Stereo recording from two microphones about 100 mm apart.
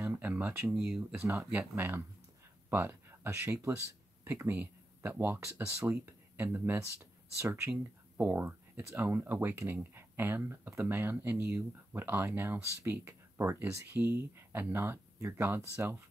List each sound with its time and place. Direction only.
0.0 s a sound: 15° right (ahead or behind)
0.7 s speech: 5° right (ahead or behind)
1.2 s speech: 25° right (ahead or behind)